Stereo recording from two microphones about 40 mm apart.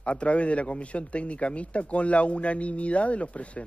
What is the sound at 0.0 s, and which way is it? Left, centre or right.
Speech, left.